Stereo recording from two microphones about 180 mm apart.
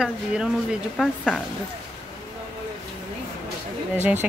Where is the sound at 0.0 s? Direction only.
5° right (ahead or behind).